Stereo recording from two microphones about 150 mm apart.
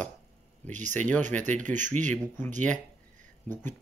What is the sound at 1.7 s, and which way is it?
Speech, 55° right (ahead or behind).